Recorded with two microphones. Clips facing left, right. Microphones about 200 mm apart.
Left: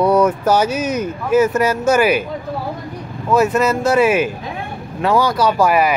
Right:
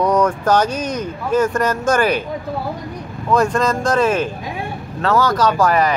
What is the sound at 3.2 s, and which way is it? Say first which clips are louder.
Speech: left 2 dB; 5° left (ahead or behind).